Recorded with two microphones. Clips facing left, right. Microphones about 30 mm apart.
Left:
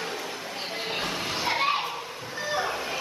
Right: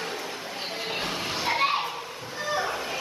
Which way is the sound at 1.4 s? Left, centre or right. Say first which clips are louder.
Right 1 dB; centre.